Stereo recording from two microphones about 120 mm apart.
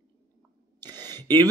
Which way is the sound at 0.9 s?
20° left (ahead or behind).